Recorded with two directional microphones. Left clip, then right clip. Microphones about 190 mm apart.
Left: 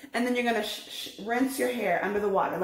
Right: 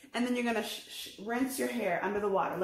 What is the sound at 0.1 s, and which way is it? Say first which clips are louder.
Speech: left 5 dB; 10° right (ahead or behind).